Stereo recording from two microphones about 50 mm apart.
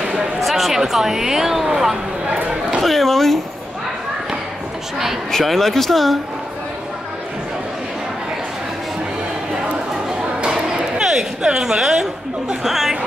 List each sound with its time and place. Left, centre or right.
0.4 s speech: centre
2.2 s speech: right
2.8 s speech: centre
5.3 s speech: centre
10.0 s a sound: centre